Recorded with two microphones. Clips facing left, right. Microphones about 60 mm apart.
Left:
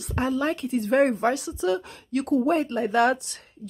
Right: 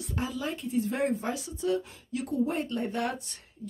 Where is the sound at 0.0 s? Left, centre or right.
Left.